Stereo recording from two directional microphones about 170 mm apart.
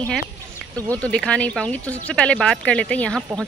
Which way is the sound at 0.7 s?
20° right (ahead or behind).